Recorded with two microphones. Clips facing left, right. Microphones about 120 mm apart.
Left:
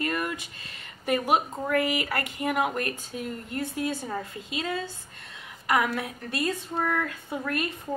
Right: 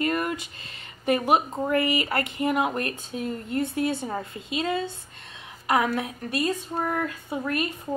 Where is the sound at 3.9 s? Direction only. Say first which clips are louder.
Right 2 dB; 20° right (ahead or behind).